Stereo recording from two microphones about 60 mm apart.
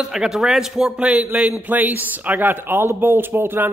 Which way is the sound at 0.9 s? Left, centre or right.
Centre.